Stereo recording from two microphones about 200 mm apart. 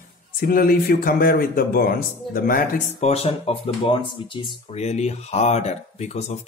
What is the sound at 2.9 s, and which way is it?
Speech, 30° left (ahead or behind).